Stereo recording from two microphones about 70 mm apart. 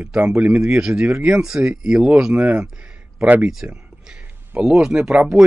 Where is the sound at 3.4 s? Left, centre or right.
Centre.